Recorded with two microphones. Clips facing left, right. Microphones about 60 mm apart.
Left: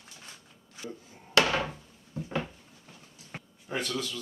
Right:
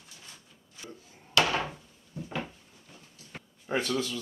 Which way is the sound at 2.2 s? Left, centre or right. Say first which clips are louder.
Left 2 dB; centre.